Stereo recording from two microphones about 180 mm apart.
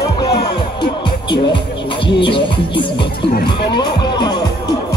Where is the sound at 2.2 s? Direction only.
30° left (ahead or behind).